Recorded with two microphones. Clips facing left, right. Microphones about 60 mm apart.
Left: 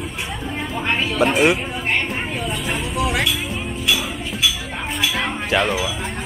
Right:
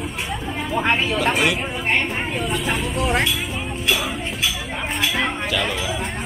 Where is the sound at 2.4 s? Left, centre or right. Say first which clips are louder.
Right 1 dB; centre.